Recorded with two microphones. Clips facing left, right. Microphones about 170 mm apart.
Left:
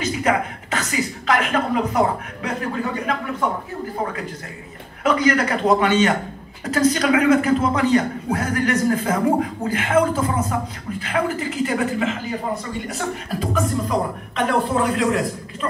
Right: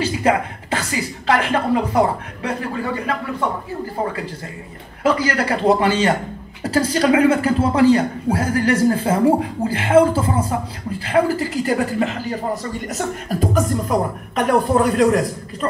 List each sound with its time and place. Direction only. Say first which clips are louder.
0.0 s speech: right 2 dB; 30° right (ahead or behind)
5.0 s a man's voice: even; 30° right (ahead or behind)